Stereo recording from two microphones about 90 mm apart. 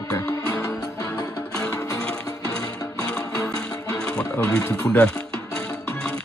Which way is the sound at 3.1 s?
10° left (ahead or behind).